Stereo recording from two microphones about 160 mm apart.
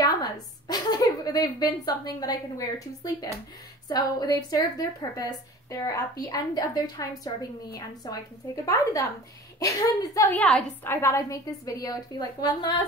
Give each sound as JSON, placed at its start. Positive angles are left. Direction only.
{"t": 0.0, "sound": "a woman's voice", "side_deg": 25}
{"t": 9.6, "sound": "a woman's voice", "side_deg": 20}
{"t": 10.3, "sound": "a woman's voice", "side_deg": 10}